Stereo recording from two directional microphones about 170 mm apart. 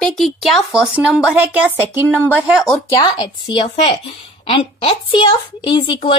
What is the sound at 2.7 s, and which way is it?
A woman's voice, 20° left (ahead or behind).